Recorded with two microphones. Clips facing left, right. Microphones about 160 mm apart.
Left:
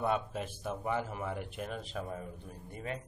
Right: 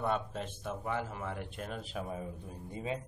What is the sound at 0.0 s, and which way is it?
A man's voice, 10° left (ahead or behind).